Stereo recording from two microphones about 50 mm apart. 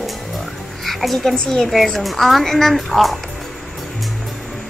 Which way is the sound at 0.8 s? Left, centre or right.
Centre.